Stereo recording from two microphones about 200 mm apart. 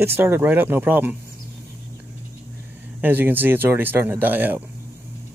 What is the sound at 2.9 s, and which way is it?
Speech, 10° right (ahead or behind).